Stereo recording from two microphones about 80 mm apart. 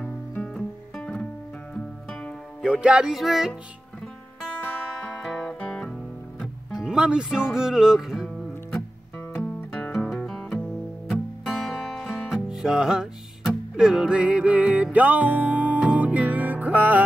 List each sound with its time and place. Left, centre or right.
0.0 s music: centre
2.6 s music: centre
4.6 s music: centre
5.1 s music: centre
6.7 s music: centre
9.6 s music: left
9.9 s music: centre